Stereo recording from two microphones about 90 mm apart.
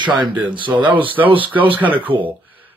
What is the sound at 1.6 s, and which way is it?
Speech, 20° right (ahead or behind).